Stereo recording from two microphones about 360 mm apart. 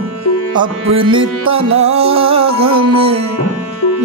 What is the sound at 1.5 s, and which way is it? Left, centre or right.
Music, centre.